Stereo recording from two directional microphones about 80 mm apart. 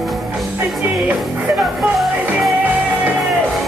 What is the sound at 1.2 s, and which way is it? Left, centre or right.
Music, centre.